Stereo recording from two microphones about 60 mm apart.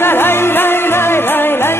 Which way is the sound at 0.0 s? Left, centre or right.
Left.